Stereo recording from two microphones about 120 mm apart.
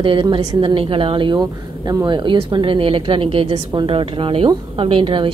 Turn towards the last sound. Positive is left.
turn(degrees=-45)  # may be behind; listen again after turning